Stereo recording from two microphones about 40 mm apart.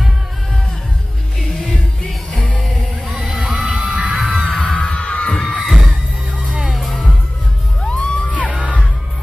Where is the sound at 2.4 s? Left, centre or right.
Left.